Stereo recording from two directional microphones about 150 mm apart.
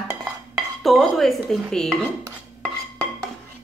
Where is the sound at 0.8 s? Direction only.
Centre (ahead or behind).